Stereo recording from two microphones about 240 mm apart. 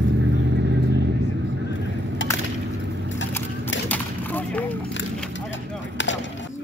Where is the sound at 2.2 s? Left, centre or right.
Left.